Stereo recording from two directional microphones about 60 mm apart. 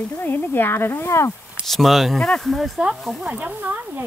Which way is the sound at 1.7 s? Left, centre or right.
Centre.